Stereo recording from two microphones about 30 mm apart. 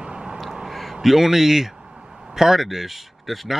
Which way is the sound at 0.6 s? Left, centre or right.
Centre.